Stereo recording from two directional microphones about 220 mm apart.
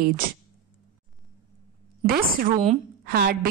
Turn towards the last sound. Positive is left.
turn(degrees=-45)  # may be behind; listen again after turning